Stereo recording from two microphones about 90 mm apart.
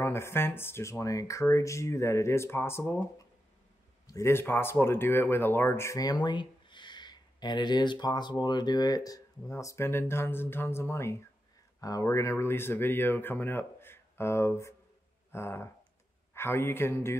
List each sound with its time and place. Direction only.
0.0 s speech: 30° left (ahead or behind)
4.1 s speech: 30° left (ahead or behind)
5.9 s speech: 45° left (ahead or behind); by 11.2 s 30° left (ahead or behind)
11.8 s speech: 40° left (ahead or behind)